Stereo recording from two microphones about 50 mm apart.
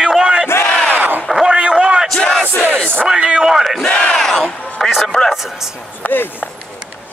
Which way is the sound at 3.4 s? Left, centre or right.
Centre.